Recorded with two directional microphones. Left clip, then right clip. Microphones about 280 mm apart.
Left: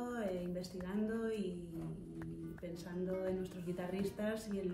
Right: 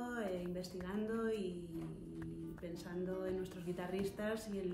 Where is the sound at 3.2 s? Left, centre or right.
Centre.